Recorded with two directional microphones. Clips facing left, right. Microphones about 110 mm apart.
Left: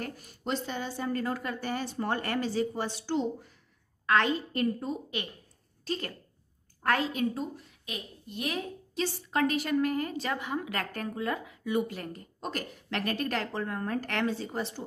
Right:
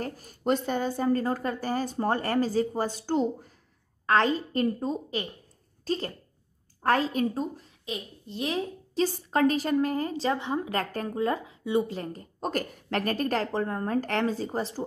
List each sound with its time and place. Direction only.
0.0 s a woman's voice: 45° right (ahead or behind)